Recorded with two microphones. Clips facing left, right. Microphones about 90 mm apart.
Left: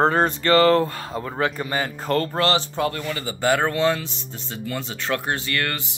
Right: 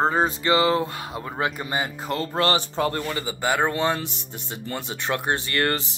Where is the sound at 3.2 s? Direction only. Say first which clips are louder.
Left 3 dB; 10° right (ahead or behind).